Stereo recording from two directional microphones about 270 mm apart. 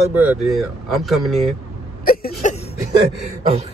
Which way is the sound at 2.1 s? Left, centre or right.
Left.